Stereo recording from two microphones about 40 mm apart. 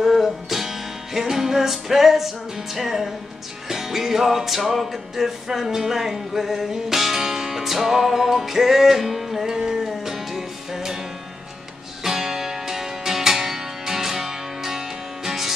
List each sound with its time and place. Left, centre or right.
0.0 s music: centre
12.0 s music: centre